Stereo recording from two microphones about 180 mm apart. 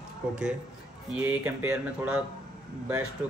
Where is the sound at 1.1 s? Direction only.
10° right (ahead or behind).